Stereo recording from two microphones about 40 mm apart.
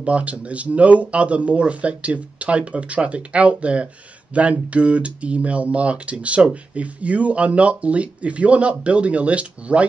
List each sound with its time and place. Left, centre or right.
0.0 s speech: right